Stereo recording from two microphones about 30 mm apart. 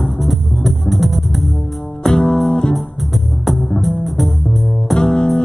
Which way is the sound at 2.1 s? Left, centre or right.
Left.